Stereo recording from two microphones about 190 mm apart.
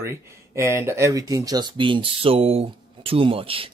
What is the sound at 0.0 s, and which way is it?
Speech, 15° right (ahead or behind).